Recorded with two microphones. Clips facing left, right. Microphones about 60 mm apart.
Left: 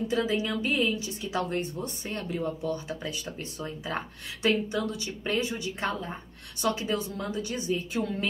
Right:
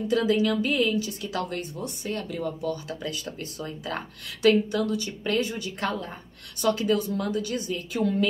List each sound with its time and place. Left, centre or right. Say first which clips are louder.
0.1 s a woman's voice: right 7 dB; left
2.9 s a woman's voice: right 2 dB; centre